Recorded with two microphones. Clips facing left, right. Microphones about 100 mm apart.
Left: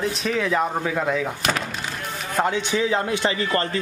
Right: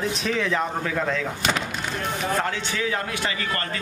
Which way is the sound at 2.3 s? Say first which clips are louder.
Left 9 dB; 15° left (ahead or behind).